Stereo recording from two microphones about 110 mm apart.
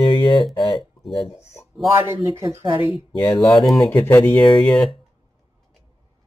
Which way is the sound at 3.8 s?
20° left (ahead or behind).